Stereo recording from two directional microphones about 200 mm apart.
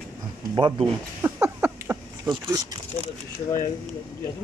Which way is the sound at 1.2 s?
10° right (ahead or behind).